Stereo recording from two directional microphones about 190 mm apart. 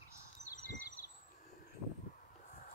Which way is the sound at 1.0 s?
45° left (ahead or behind).